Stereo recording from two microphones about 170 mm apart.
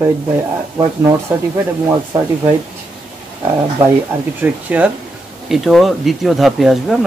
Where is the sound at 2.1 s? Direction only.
15° right (ahead or behind).